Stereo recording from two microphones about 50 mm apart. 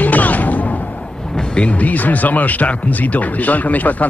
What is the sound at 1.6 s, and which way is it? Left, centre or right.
Speech, left.